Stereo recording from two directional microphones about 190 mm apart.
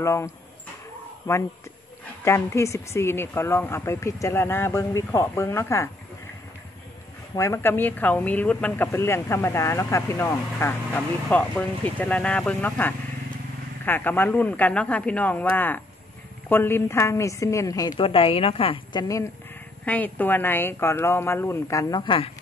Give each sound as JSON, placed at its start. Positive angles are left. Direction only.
{"t": 0.0, "sound": "speech", "side_deg": 15}
{"t": 7.3, "sound": "speech", "side_deg": 15}
{"t": 19.8, "sound": "speech", "side_deg": 10}